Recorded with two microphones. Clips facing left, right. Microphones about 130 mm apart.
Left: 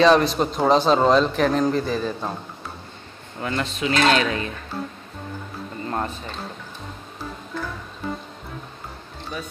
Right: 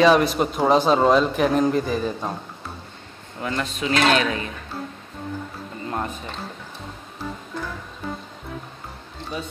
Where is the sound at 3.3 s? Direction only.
25° left (ahead or behind).